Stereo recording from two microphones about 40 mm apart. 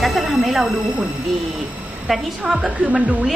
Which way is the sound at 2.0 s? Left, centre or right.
Centre.